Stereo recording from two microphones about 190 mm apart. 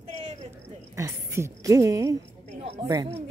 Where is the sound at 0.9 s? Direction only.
15° right (ahead or behind).